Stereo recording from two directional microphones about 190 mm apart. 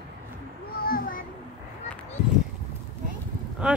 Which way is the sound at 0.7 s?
50° left (ahead or behind).